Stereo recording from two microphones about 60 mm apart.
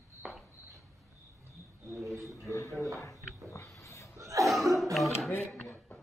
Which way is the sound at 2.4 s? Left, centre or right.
Left.